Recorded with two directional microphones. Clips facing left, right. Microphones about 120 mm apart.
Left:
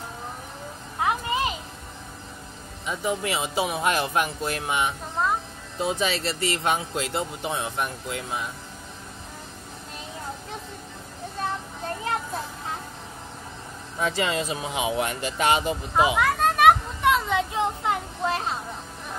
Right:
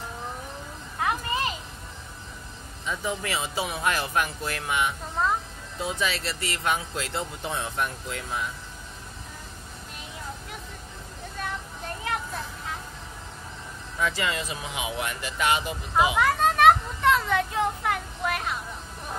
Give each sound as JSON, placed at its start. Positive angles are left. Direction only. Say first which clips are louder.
{"t": 0.9, "sound": "a sound", "louder": "left 2 dB", "side_deg": 20}
{"t": 2.9, "sound": "speech", "louder": "left 3 dB", "side_deg": 20}
{"t": 13.9, "sound": "speech", "louder": "left 3 dB", "side_deg": 25}
{"t": 16.2, "sound": "children playing", "louder": "even", "side_deg": 5}